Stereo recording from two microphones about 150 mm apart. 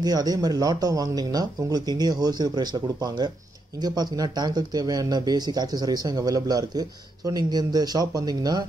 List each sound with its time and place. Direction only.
0.0 s speech: 25° right (ahead or behind)